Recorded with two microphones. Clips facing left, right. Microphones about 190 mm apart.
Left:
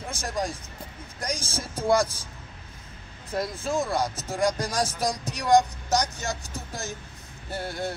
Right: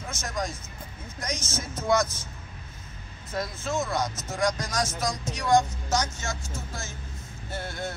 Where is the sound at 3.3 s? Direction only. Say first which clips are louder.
Left 2 dB; 30° left (ahead or behind).